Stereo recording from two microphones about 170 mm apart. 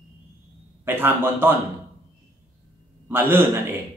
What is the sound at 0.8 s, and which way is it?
Speech, 15° right (ahead or behind).